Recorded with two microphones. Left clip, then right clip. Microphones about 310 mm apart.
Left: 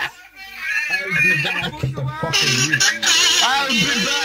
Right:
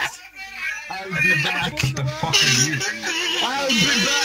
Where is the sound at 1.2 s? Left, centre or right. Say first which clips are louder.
Even; centre.